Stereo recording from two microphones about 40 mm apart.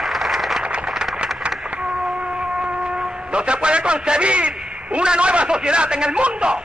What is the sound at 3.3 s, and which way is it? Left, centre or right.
A man's voice, right.